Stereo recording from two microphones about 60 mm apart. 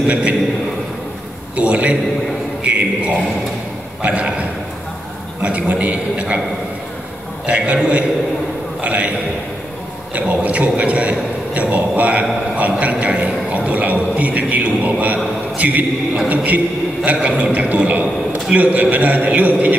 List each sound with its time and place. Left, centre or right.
0.0 s a man's voice: centre
1.6 s a man's voice: right
7.4 s a man's voice: right
10.1 s a man's voice: right
15.5 s mantra: right
16.3 s a man's voice: right